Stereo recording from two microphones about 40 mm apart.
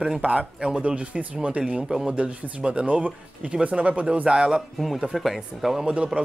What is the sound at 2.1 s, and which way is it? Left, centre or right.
Speech, right.